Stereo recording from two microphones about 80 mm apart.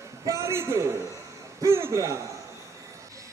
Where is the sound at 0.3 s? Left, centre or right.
Right.